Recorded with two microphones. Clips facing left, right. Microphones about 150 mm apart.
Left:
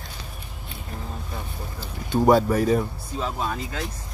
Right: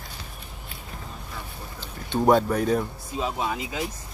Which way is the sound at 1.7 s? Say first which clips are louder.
Left 3 dB; centre (ahead or behind).